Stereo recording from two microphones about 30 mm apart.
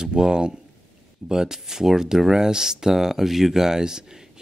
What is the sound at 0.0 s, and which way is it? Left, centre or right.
Speech, right.